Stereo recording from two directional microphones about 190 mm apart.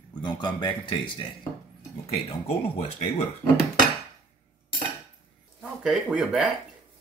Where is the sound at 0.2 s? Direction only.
25° left (ahead or behind).